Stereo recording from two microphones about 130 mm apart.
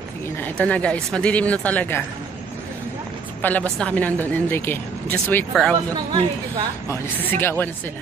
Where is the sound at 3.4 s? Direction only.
10° left (ahead or behind).